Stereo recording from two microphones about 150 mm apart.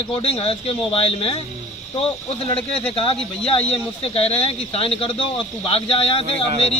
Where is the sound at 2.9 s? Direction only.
35° left (ahead or behind).